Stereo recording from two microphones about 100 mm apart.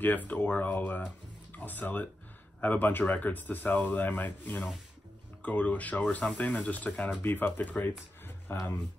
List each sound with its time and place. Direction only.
0.0 s speech: 15° left (ahead or behind)